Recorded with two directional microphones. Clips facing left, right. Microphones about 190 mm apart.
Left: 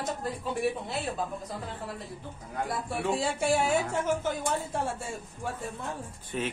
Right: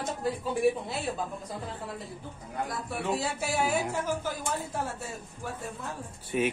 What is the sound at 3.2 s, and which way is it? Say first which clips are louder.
Speech: left 3 dB; 25° left (ahead or behind).